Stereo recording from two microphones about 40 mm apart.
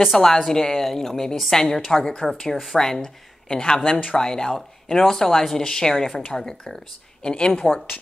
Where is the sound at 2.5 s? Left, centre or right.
Centre.